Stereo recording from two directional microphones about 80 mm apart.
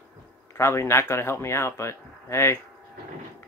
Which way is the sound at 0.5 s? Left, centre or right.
Left.